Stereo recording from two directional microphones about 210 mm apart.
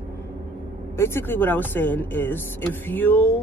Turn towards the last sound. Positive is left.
turn(degrees=10)  # may be behind; listen again after turning